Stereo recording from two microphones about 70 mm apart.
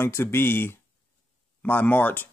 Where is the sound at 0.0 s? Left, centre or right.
Left.